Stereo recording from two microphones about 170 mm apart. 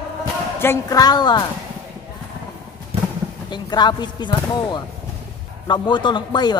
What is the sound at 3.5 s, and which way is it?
Speech, 25° left (ahead or behind).